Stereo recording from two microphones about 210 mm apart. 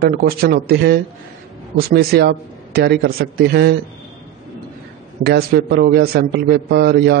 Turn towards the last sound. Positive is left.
turn(degrees=-50)  # may be behind; listen again after turning